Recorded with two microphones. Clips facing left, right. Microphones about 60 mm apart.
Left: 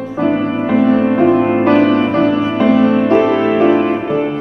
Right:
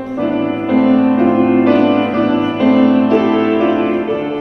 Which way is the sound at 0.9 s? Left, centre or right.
Left.